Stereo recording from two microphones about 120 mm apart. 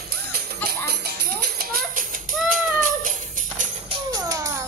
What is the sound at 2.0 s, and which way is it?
Music, 90° right.